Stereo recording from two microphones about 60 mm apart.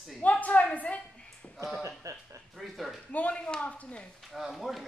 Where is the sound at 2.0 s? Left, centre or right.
Right.